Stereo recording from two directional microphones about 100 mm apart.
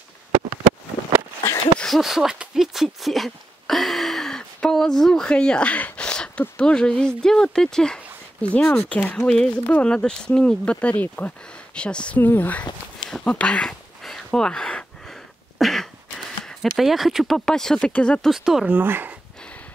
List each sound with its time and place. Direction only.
1.8 s a sound: centre (ahead or behind)
6.5 s speech: 10° left (ahead or behind)
13.1 s a sound: 10° left (ahead or behind)
15.6 s throat clearing: 5° left (ahead or behind)
16.6 s speech: centre (ahead or behind)
18.3 s speech: 5° right (ahead or behind)
18.8 s speech: 20° right (ahead or behind)